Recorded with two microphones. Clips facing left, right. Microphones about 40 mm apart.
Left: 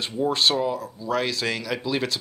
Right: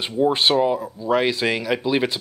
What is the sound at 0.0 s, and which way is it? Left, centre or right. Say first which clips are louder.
Speech: right 4 dB; right.